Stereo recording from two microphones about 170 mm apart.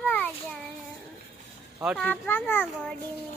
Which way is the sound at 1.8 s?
5° left (ahead or behind).